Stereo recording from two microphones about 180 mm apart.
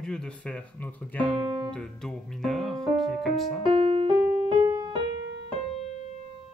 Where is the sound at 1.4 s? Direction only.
25° right (ahead or behind).